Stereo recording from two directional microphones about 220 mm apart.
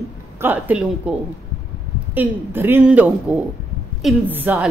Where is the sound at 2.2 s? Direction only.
10° right (ahead or behind).